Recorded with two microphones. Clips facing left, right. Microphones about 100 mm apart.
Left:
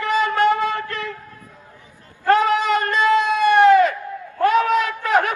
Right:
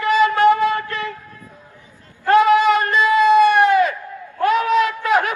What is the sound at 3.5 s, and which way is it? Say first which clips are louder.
Crowd: left 2 dB; 15° right (ahead or behind).